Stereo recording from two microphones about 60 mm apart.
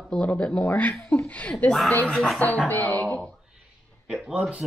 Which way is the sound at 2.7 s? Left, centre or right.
Left.